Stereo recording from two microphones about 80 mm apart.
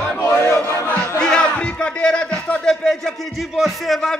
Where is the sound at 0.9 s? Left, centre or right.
Centre.